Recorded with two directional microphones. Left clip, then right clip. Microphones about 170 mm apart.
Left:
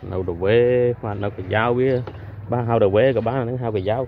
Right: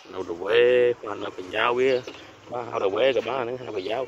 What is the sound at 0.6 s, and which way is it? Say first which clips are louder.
Speech: right 1 dB; 20° right (ahead or behind).